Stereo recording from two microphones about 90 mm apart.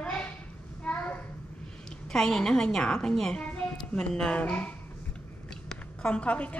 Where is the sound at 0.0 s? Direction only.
10° left (ahead or behind).